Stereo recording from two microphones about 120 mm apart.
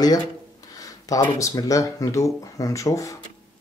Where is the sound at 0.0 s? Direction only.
30° left (ahead or behind).